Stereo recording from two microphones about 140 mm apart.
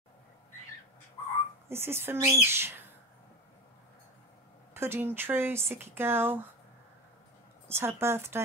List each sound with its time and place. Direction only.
1.7 s speech: 15° right (ahead or behind)
4.7 s speech: 15° right (ahead or behind)
7.6 s speech: 15° right (ahead or behind)